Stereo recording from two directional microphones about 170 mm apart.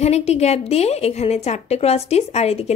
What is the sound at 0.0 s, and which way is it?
Speech, 40° left (ahead or behind).